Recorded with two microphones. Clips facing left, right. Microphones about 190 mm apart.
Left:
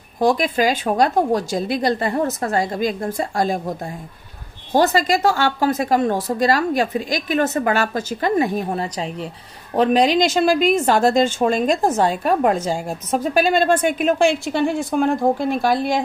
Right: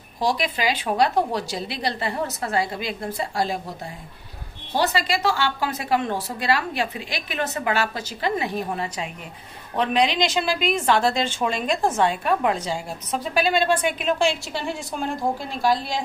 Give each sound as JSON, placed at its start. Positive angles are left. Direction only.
{"t": 0.2, "sound": "a woman's voice", "side_deg": 50}